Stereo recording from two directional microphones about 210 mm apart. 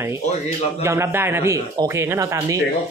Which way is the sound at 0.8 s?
10° right (ahead or behind).